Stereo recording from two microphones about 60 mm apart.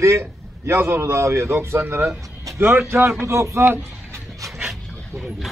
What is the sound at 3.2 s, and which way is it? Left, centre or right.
Speech, right.